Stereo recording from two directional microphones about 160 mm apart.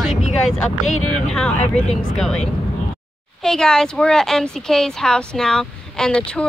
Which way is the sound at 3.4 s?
5° left (ahead or behind).